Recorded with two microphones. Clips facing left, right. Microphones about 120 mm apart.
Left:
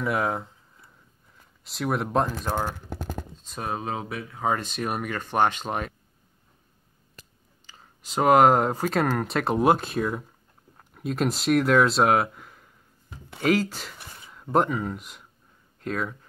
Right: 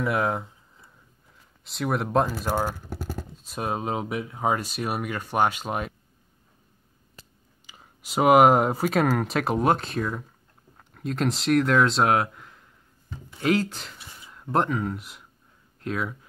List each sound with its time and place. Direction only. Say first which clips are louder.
0.0 s speech: right 1 dB; centre (ahead or behind)
1.6 s speech: even; centre (ahead or behind)
7.6 s speech: right 1 dB; 10° right (ahead or behind)